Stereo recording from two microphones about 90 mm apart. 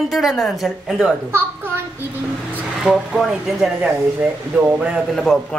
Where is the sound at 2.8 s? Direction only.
5° right (ahead or behind).